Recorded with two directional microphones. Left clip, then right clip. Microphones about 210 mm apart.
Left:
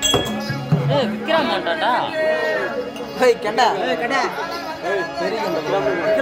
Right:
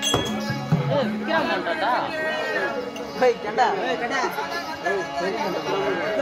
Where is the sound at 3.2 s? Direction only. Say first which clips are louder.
Left 4 dB; 45° left (ahead or behind).